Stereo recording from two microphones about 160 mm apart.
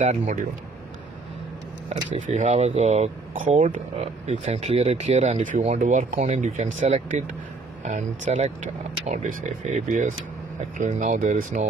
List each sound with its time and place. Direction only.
0.0 s speech: 50° right (ahead or behind)
2.1 s speech: 50° right (ahead or behind)